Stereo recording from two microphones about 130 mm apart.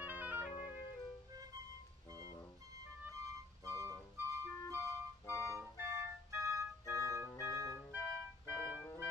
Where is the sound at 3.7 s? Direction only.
20° right (ahead or behind).